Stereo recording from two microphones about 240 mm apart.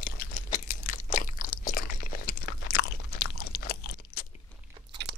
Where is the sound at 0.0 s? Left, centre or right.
Left.